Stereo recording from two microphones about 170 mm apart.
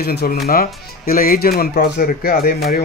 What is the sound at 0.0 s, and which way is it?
Speech, 70° left (ahead or behind).